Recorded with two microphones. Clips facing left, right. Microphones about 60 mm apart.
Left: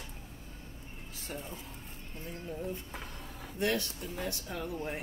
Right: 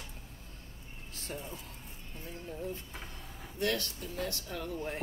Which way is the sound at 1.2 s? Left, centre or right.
Centre.